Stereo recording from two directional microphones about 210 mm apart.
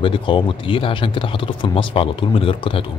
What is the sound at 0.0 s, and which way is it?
Speech, 25° left (ahead or behind).